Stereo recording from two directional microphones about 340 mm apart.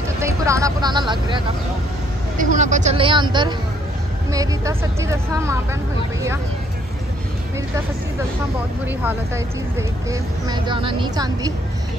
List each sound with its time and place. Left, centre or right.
0.2 s speech: centre
8.8 s speech: centre